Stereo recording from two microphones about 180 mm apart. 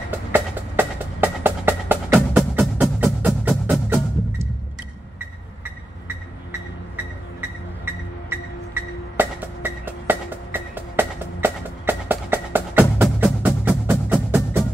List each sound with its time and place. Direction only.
0.1 s music: 10° right (ahead or behind)
7.8 s music: 10° right (ahead or behind)